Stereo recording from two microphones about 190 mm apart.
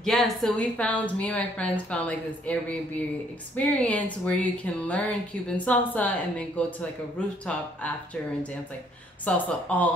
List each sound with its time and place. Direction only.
0.0 s a woman's voice: centre (ahead or behind)
3.5 s a woman's voice: 5° left (ahead or behind)